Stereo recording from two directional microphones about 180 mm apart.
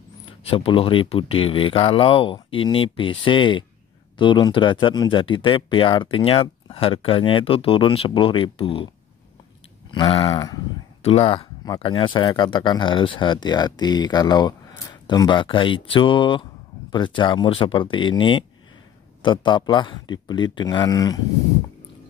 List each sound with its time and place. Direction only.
0.2 s speech: 35° left (ahead or behind)